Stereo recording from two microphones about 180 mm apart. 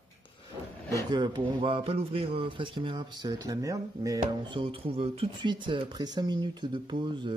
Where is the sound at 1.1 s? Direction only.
25° right (ahead or behind).